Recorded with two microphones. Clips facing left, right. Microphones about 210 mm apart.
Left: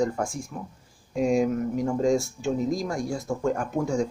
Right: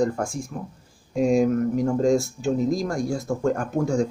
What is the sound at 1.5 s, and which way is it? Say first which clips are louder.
Speech: right 4 dB; 50° right (ahead or behind).